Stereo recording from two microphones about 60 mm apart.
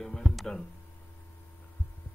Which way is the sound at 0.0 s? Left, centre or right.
Centre.